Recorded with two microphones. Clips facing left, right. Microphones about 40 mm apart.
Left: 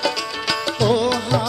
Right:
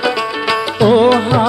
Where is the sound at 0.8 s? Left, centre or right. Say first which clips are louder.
Right 9 dB; right.